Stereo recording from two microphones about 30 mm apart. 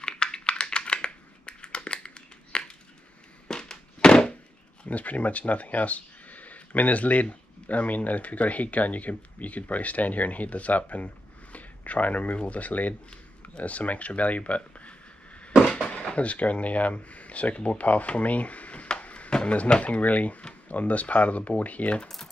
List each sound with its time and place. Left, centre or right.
0.0 s computer keyboard: left
3.4 s fireworks: left
4.8 s speech: left
11.5 s a sound: left
12.4 s speech: left
13.1 s speech: left
16.2 s speech: left
18.9 s a sound: left
19.8 s speech: left
22.0 s typing: centre